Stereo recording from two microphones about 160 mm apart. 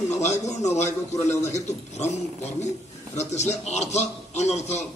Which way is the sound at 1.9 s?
45° left (ahead or behind).